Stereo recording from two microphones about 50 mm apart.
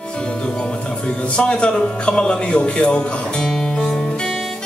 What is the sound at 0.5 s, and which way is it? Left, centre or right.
Speech, centre.